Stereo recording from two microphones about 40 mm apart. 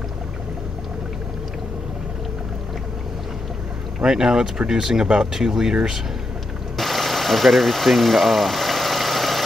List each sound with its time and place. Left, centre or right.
4.0 s speech: centre
6.8 s engine: centre